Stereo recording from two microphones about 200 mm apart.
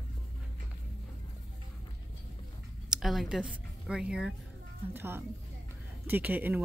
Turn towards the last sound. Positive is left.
turn(degrees=-10)  # may be behind; listen again after turning